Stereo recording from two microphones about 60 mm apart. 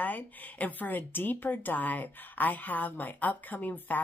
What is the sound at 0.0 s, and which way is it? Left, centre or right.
A woman's voice, left.